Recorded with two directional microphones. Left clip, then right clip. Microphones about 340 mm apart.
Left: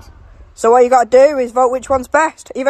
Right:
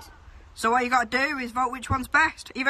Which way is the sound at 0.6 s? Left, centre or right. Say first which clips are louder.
Left 13 dB; centre.